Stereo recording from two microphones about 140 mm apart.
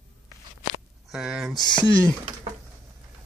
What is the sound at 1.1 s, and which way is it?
Speech, 5° right (ahead or behind).